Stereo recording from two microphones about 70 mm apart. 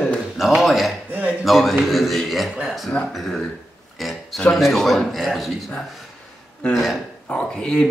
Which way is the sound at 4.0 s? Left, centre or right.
Centre.